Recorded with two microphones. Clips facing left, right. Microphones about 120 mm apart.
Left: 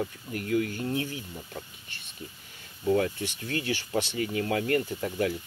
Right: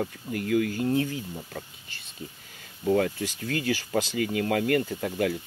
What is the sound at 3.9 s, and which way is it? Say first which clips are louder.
Speech: even; 90° right.